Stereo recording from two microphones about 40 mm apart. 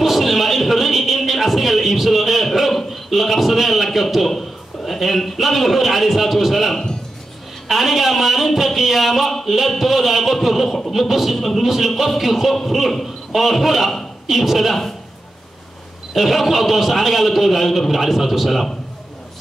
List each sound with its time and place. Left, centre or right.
0.0 s a sound: centre
4.8 s a man's voice: centre
16.1 s a man's voice: centre